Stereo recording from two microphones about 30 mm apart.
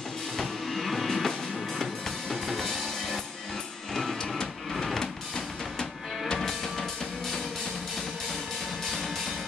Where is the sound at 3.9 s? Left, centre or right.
Centre.